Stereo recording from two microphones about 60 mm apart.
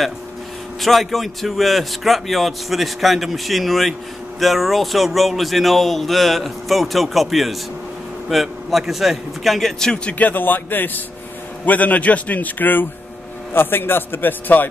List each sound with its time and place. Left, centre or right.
0.7 s speech: centre
10.1 s a man's voice: left